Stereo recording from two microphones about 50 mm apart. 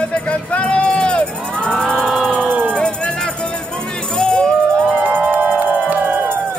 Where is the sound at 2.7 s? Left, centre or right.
Centre.